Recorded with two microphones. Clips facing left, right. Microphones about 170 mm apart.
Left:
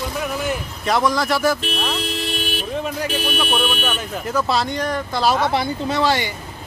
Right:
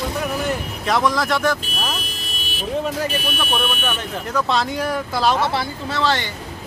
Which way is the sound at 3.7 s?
Centre (ahead or behind).